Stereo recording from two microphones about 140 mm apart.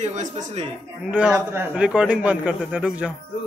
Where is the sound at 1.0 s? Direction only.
5° right (ahead or behind).